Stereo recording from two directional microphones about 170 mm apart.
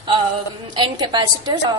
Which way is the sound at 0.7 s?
25° right (ahead or behind).